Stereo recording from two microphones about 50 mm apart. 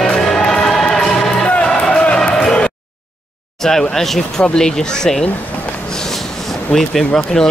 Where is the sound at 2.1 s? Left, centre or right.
Centre.